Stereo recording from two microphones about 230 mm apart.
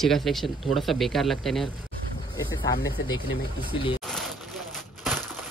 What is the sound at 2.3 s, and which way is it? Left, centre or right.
Speech, centre.